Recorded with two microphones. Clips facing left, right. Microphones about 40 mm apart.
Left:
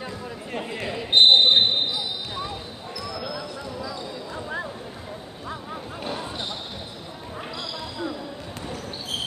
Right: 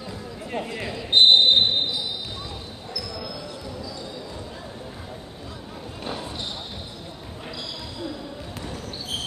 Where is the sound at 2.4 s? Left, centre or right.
Left.